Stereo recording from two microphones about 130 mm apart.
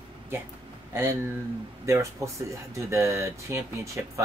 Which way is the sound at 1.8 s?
20° right (ahead or behind).